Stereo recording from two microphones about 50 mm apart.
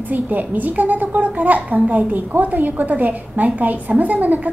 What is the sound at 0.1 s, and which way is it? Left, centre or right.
A woman's voice, right.